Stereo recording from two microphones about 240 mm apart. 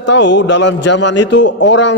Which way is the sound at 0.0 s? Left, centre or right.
Left.